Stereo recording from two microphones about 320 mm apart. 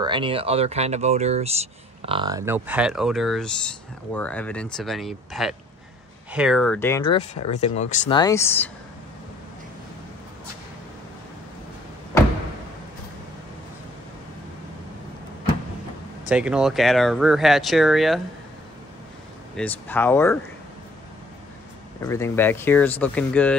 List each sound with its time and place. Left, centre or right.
0.0 s speech: centre
7.2 s speech: centre
16.3 s speech: centre
19.5 s speech: centre
22.0 s speech: centre